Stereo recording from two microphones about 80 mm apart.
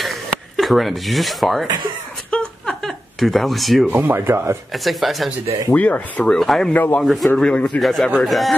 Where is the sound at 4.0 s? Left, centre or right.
Right.